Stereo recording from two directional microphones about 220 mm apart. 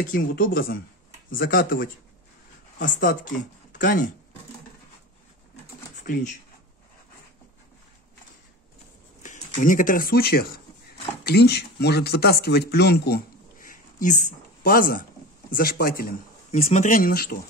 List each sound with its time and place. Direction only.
0.0 s speech: 40° left (ahead or behind)
6.0 s speech: 40° left (ahead or behind)
9.6 s speech: 40° left (ahead or behind)